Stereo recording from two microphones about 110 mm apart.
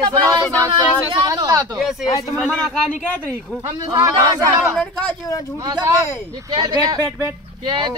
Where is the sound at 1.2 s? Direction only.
35° right (ahead or behind).